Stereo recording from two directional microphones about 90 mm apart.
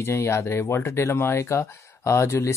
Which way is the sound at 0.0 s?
30° left (ahead or behind).